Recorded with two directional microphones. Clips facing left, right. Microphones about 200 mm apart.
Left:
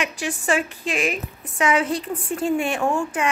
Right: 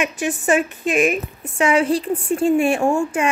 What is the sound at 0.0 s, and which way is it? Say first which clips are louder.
Speech: right 5 dB; 20° right (ahead or behind).